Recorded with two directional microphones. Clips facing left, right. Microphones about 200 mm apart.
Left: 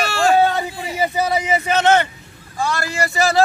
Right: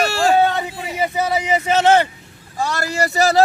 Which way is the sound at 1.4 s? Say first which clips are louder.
Right 4 dB; 20° right (ahead or behind).